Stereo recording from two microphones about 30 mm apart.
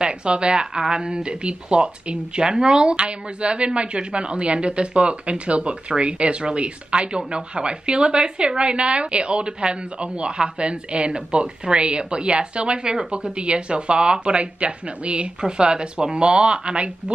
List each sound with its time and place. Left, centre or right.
0.0 s speech: right
15.4 s speech: right